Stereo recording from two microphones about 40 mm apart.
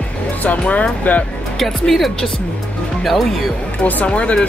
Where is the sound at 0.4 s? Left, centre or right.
Left.